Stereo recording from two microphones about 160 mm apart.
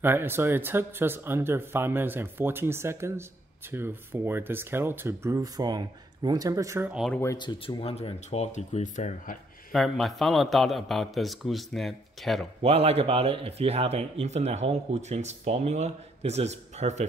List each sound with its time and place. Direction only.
0.0 s speech: 15° right (ahead or behind)
6.9 s speech: centre (ahead or behind)
7.3 s speech: 30° left (ahead or behind); by 9.4 s 50° left (ahead or behind)
9.7 s speech: centre (ahead or behind)
12.6 s speech: 40° right (ahead or behind)